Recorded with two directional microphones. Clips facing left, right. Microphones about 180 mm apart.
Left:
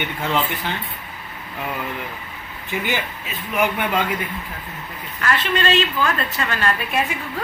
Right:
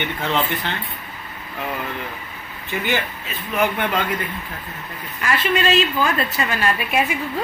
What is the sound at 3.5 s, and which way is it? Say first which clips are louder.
Speech: even; 10° left (ahead or behind).